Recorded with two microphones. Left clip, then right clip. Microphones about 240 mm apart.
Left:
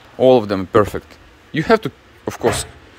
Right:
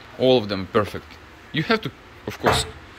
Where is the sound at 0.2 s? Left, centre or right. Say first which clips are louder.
Left 6 dB; left.